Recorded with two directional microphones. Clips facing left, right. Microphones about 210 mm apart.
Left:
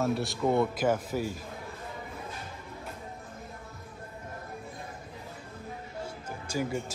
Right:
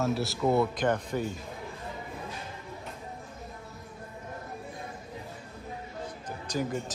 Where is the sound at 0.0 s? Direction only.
Centre (ahead or behind).